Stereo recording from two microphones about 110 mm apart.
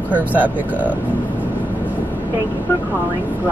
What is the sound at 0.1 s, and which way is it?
Speech, 15° right (ahead or behind).